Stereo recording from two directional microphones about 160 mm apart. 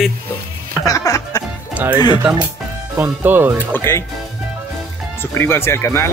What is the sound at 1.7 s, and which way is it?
Speech, 10° right (ahead or behind).